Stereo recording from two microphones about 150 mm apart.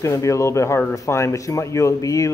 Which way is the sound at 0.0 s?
20° left (ahead or behind).